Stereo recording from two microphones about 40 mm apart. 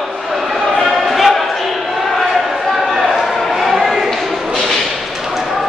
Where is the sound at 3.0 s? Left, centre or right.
Centre.